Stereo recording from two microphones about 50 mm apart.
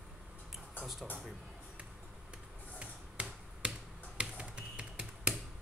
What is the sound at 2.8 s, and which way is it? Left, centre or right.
Finger snapping, right.